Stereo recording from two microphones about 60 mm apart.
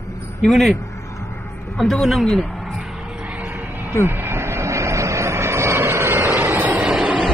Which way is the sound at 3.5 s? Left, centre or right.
Right.